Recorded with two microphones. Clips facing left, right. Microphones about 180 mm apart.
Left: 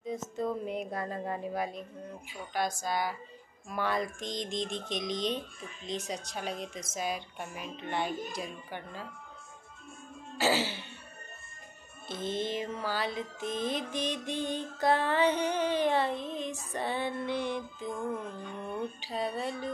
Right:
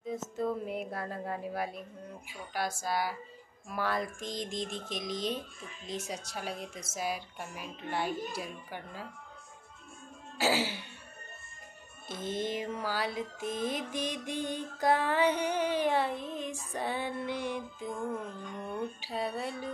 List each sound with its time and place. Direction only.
0.0 s speech: 5° right (ahead or behind)
2.8 s music: 5° right (ahead or behind)
3.6 s speech: 5° right (ahead or behind)
5.9 s music: 5° right (ahead or behind)
10.3 s speech: 10° right (ahead or behind)
12.1 s music: 10° right (ahead or behind)
18.9 s music: 10° right (ahead or behind)